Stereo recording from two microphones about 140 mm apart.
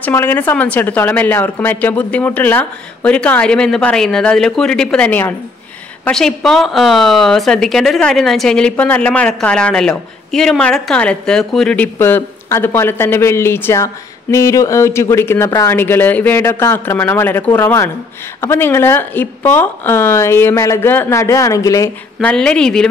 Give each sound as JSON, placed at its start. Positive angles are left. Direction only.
{"t": 0.0, "sound": "a woman's voice", "side_deg": 15}
{"t": 22.2, "sound": "a woman's voice", "side_deg": 5}